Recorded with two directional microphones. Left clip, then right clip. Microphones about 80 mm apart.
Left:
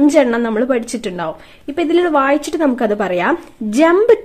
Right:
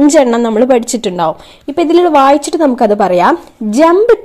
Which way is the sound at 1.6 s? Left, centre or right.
Right.